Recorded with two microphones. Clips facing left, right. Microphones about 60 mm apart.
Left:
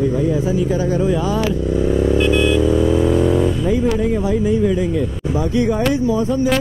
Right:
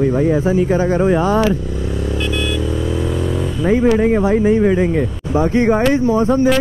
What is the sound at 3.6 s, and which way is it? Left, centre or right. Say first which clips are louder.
Speech: right 4 dB; right.